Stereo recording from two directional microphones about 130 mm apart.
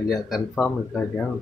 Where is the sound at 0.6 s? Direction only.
10° left (ahead or behind).